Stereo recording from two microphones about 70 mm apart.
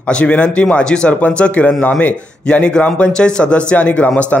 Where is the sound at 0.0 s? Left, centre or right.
Centre.